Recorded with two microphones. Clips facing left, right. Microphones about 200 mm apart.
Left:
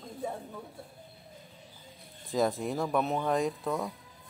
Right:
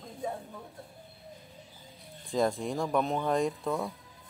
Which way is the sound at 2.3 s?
Centre (ahead or behind).